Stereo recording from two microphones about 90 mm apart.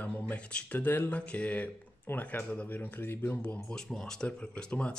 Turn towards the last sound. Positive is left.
turn(degrees=10)  # may be behind; listen again after turning